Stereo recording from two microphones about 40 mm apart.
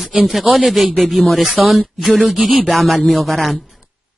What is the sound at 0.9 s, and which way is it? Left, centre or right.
Speech, centre.